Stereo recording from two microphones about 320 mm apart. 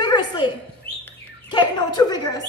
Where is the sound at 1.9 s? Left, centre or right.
Centre.